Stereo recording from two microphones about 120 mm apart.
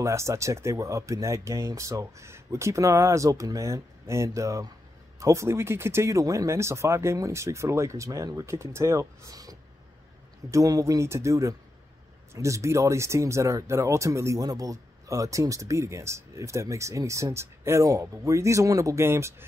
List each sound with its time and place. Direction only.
0.0 s speech: 25° right (ahead or behind)